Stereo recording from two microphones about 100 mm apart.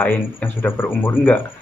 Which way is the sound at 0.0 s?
15° left (ahead or behind).